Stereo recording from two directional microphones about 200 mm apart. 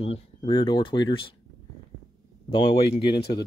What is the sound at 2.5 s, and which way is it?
Speech, 25° left (ahead or behind).